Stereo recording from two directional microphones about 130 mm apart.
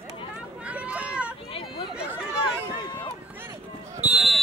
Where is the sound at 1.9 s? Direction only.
5° right (ahead or behind).